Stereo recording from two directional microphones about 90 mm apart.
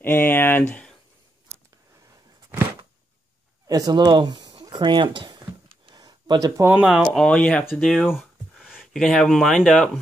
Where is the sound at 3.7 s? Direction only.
45° right (ahead or behind); by 5.9 s 75° right (ahead or behind).